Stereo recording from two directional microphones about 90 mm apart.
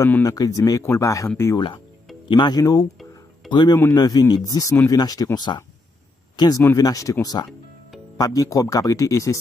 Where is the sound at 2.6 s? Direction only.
45° left (ahead or behind).